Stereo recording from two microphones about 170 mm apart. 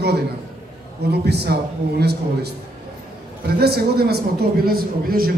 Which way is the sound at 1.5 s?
70° right (ahead or behind).